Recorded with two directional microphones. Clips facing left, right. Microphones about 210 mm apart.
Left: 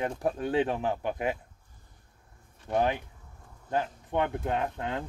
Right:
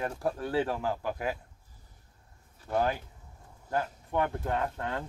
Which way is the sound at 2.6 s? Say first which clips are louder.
Left 2 dB; 20° left (ahead or behind).